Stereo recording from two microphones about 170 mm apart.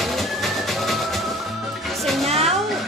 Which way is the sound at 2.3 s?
40° right (ahead or behind).